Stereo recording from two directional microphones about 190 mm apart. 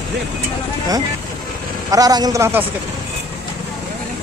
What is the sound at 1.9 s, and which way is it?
Speech, 20° right (ahead or behind).